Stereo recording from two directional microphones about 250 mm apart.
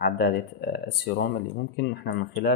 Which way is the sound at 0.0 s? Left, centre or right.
Left.